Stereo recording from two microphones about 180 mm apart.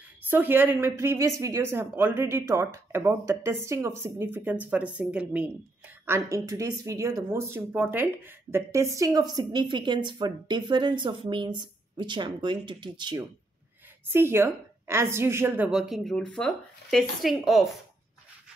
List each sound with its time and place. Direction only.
0.3 s speech: 10° right (ahead or behind)
14.1 s a woman's voice: 15° right (ahead or behind)